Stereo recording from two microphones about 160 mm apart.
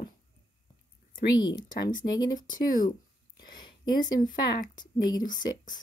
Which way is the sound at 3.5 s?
25° left (ahead or behind).